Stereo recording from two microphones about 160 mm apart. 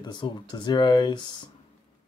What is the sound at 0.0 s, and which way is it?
Speech, 30° left (ahead or behind).